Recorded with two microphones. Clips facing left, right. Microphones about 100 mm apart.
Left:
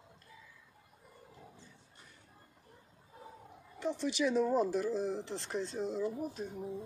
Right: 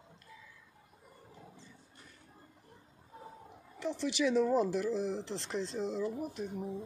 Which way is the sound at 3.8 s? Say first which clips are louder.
Right 1 dB; 90° right.